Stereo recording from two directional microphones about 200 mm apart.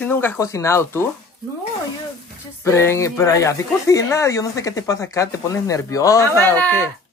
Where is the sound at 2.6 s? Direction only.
15° left (ahead or behind).